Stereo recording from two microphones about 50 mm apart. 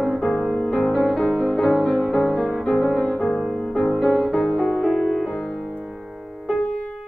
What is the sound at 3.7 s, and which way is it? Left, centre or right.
Music, centre.